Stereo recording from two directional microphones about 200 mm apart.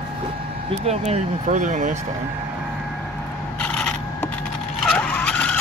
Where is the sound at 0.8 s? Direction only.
35° right (ahead or behind).